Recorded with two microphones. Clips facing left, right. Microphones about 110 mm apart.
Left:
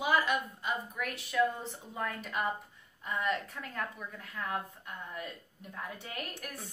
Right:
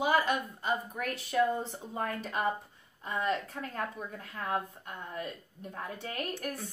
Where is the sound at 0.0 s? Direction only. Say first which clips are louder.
Right 2 dB; 35° right (ahead or behind).